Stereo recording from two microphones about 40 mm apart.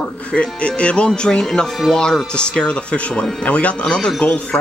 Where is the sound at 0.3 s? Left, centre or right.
Left.